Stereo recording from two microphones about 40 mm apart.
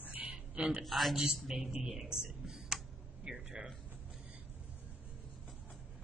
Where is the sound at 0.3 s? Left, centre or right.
Right.